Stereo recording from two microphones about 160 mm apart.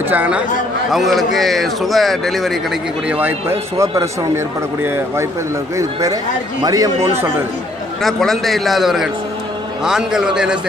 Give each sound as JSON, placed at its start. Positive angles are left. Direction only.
{"t": 0.1, "sound": "a man's voice", "side_deg": -10}
{"t": 0.9, "sound": "a man's voice", "side_deg": 0}
{"t": 8.0, "sound": "speech", "side_deg": 0}